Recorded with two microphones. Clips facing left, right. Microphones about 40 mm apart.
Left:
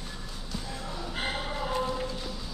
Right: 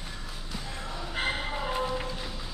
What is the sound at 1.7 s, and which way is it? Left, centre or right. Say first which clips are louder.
Music: left 2 dB; right.